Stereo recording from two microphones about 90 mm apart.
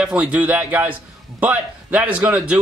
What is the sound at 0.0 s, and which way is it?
A man's voice, 15° right (ahead or behind).